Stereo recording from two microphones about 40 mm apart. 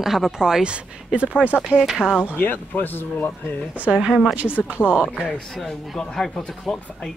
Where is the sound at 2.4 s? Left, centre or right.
Left.